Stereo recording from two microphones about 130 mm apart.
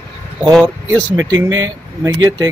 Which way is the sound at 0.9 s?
25° right (ahead or behind).